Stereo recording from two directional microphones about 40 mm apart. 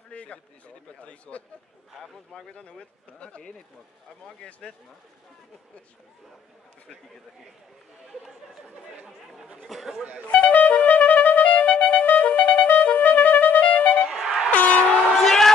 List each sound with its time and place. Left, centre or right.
0.1 s a sound: left
1.0 s speech: left
2.5 s speech: left
9.7 s speech: centre
10.4 s music: left
14.1 s air horn: centre
14.5 s train: left
15.2 s a sound: centre